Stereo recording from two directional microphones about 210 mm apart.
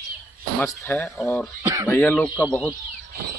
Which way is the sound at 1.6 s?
10° right (ahead or behind).